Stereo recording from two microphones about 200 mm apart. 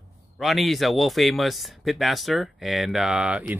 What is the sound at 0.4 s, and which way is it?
Speech, centre (ahead or behind).